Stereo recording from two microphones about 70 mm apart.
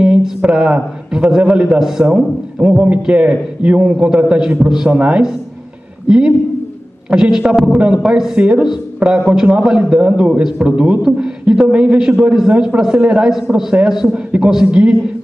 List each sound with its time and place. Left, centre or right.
0.0 s a man's voice: centre